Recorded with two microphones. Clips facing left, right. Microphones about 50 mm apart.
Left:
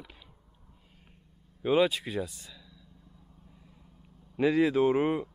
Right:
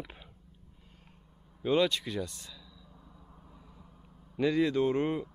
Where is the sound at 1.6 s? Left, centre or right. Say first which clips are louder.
Left 2 dB; centre.